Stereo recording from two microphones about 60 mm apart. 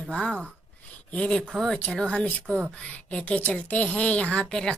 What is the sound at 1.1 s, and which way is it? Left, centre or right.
A child's voice, centre.